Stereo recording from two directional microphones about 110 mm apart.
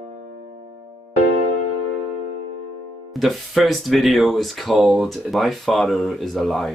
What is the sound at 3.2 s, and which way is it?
Speech, centre (ahead or behind).